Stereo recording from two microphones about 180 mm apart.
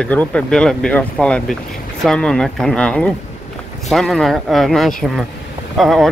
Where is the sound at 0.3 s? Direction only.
5° left (ahead or behind).